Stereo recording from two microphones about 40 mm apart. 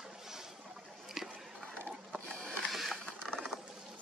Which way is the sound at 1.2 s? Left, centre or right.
Centre.